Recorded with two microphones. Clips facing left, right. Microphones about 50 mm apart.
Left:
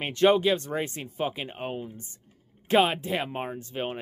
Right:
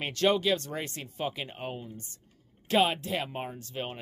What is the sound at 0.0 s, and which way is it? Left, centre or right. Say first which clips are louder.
Speech: left 5 dB; left.